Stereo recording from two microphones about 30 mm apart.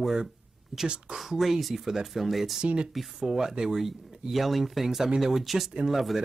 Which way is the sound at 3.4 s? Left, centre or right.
Centre.